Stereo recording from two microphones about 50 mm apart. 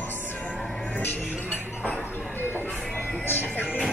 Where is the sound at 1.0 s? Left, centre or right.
Left.